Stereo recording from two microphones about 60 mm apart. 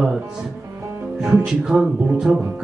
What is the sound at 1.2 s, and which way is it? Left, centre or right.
Music, centre.